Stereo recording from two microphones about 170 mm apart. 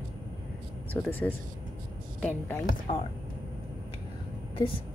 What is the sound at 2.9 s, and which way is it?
Speech, 30° left (ahead or behind).